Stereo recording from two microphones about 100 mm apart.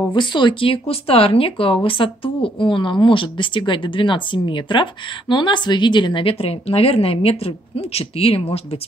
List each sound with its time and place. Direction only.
0.1 s a woman's voice: 50° left (ahead or behind); by 8.5 s 75° left (ahead or behind)